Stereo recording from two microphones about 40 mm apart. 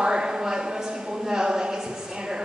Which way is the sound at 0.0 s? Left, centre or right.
Centre.